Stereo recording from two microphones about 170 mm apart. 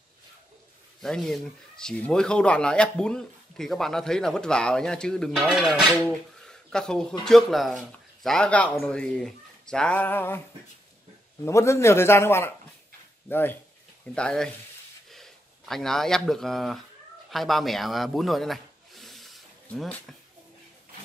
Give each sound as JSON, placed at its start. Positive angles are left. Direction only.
{"t": 1.0, "sound": "speech", "side_deg": 5}
{"t": 11.4, "sound": "a man's voice", "side_deg": 15}